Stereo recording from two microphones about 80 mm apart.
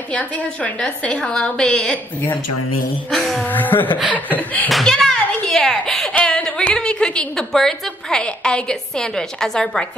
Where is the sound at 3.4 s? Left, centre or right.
Left.